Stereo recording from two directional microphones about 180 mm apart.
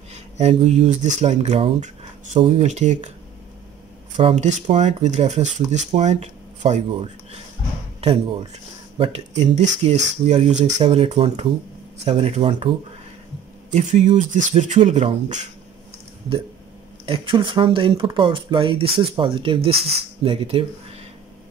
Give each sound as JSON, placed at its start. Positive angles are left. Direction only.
{"t": 0.1, "sound": "speech", "side_deg": -35}
{"t": 4.2, "sound": "speech", "side_deg": -35}
{"t": 8.0, "sound": "speech", "side_deg": -35}
{"t": 17.0, "sound": "speech", "side_deg": -30}